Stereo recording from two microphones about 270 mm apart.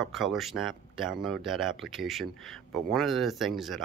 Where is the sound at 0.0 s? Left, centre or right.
Centre.